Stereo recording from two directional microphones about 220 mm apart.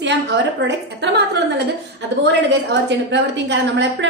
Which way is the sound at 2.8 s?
55° right (ahead or behind).